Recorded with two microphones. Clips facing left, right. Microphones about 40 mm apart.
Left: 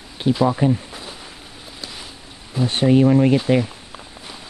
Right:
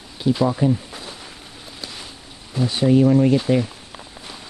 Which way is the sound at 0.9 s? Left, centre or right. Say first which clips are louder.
Even; centre.